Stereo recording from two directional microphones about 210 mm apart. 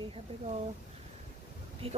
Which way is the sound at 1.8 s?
25° right (ahead or behind).